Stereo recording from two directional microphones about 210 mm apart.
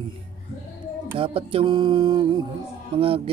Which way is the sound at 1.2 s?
25° right (ahead or behind).